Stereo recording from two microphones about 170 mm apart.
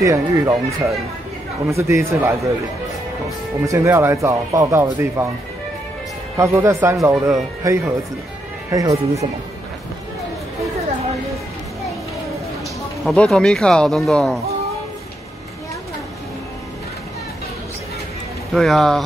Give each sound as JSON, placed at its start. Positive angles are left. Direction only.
{"t": 0.0, "sound": "speech", "side_deg": -20}
{"t": 3.6, "sound": "speech", "side_deg": -15}
{"t": 6.3, "sound": "speech", "side_deg": -15}
{"t": 13.0, "sound": "speech", "side_deg": 5}
{"t": 18.5, "sound": "speech", "side_deg": 0}